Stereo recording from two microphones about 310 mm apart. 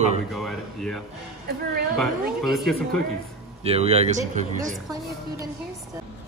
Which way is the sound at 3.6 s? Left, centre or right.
Centre.